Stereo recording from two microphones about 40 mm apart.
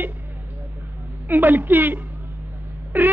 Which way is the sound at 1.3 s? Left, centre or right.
Right.